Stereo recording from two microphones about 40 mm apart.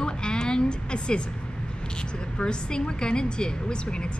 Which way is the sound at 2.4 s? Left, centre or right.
Left.